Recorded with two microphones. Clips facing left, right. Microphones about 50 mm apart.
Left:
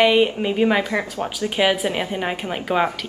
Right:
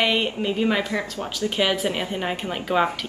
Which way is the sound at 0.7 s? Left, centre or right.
Left.